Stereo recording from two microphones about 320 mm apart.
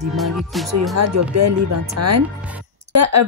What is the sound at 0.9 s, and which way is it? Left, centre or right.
Speech, right.